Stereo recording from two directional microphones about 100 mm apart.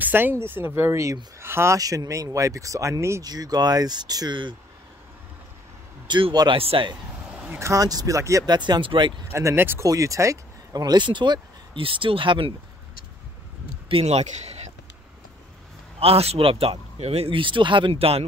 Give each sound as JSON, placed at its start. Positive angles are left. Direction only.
{"t": 0.0, "sound": "speech", "side_deg": -20}
{"t": 1.8, "sound": "speech", "side_deg": -35}
{"t": 6.0, "sound": "speech", "side_deg": -50}
{"t": 6.6, "sound": "a man's voice", "side_deg": -70}
{"t": 7.4, "sound": "speech", "side_deg": -25}
{"t": 8.5, "sound": "speech", "side_deg": -45}
{"t": 9.3, "sound": "speech", "side_deg": -25}
{"t": 11.8, "sound": "speech", "side_deg": -60}
{"t": 13.8, "sound": "speech", "side_deg": -80}
{"t": 16.0, "sound": "a man's voice", "side_deg": -85}
{"t": 17.0, "sound": "speech", "side_deg": -90}